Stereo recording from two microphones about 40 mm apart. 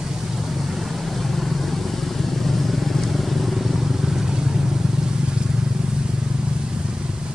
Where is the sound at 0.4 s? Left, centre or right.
Centre.